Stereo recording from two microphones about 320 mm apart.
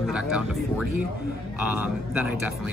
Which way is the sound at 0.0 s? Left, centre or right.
Centre.